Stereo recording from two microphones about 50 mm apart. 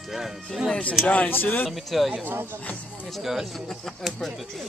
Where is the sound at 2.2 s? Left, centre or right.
Right.